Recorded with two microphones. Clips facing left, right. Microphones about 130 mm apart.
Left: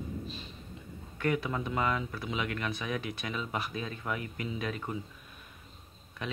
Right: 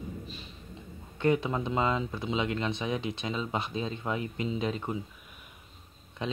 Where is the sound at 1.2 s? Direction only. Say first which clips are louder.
Right 4 dB; 25° right (ahead or behind).